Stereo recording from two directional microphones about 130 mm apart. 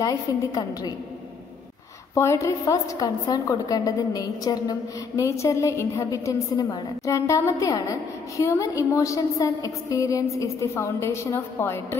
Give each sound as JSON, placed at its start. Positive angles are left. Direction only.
{"t": 0.0, "sound": "a woman's voice", "side_deg": 30}
{"t": 2.1, "sound": "a woman's voice", "side_deg": 20}